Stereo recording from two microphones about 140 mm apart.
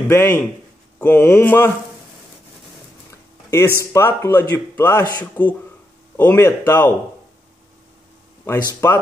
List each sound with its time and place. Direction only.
0.1 s speech: 15° left (ahead or behind)
3.1 s a sound: 20° left (ahead or behind)
3.9 s speech: 20° left (ahead or behind)
8.5 s speech: 20° left (ahead or behind)